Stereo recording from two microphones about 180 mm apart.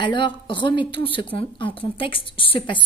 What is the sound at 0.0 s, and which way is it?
A woman's voice, 25° left (ahead or behind).